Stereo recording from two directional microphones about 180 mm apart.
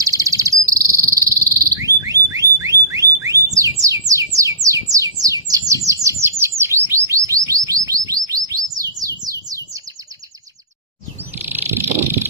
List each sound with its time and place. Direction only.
0.0 s cricket: 20° right (ahead or behind)
1.3 s bird: 20° right (ahead or behind)
2.3 s car alarm: 20° right (ahead or behind)
3.8 s bird: 20° right (ahead or behind)
9.0 s a sound: 20° right (ahead or behind)
11.3 s a sound: 10° right (ahead or behind)